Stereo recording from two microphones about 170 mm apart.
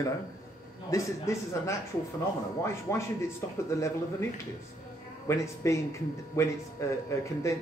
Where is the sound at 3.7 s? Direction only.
15° left (ahead or behind).